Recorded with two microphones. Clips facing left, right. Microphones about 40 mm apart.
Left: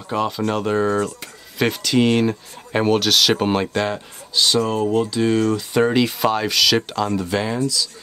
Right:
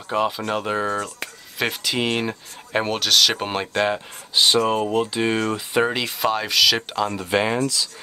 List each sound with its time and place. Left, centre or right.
0.1 s speech: centre
3.8 s speech: right
5.9 s speech: centre
7.2 s speech: right
7.5 s speech: right